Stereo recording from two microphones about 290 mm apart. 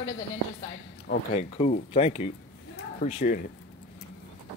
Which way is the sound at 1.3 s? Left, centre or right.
Left.